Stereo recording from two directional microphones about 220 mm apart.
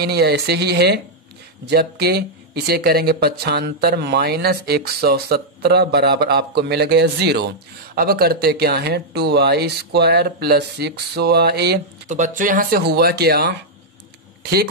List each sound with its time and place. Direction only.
0.0 s speech: 50° right (ahead or behind)
12.1 s speech: 35° right (ahead or behind)